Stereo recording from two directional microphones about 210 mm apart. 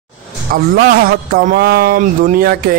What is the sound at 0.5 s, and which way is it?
A man's voice, 45° right (ahead or behind).